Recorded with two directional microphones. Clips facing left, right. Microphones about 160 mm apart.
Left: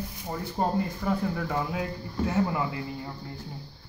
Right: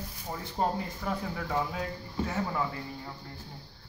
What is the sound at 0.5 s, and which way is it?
Speech, 5° left (ahead or behind).